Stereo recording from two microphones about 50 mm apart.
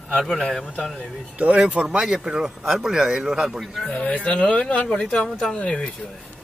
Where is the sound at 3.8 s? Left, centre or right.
Left.